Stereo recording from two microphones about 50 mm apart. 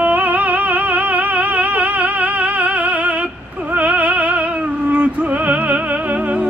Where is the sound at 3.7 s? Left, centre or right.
Right.